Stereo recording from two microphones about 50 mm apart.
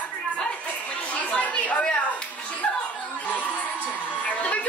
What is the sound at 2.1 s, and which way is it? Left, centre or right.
Music, left.